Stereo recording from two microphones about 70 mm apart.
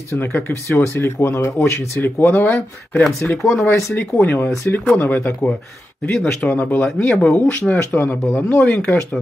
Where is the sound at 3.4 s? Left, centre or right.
Left.